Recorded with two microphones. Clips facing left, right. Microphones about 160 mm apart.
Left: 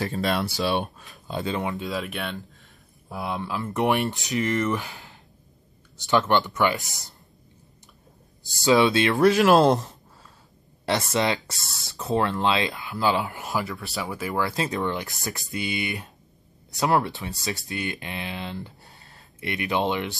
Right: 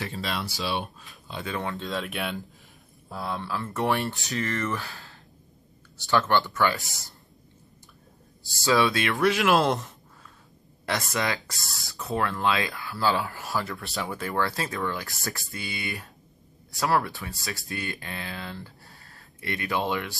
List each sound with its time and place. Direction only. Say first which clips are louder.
0.0 s speech: left 6 dB; 45° left (ahead or behind)
1.4 s speech: left 3 dB; 20° left (ahead or behind)
1.8 s speech: left 1 dB; 5° left (ahead or behind)
3.1 s speech: left 2 dB; 20° left (ahead or behind)
8.5 s speech: left 4 dB; 20° left (ahead or behind)
9.1 s speech: left 5 dB; 40° left (ahead or behind)
11.1 s speech: left 5 dB; 25° left (ahead or behind)
13.7 s speech: left 1 dB; centre (ahead or behind)
14.4 s speech: left 3 dB; 20° left (ahead or behind)